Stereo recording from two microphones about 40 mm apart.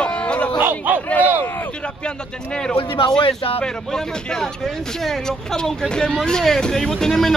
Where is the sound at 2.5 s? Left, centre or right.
Centre.